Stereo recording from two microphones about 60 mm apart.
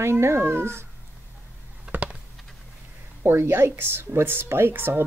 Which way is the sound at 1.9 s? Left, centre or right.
Right.